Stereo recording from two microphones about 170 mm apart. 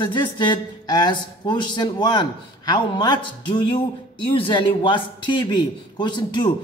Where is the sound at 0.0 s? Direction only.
30° left (ahead or behind).